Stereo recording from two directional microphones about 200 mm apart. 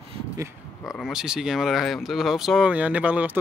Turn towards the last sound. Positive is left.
turn(degrees=-10)  # may be behind; listen again after turning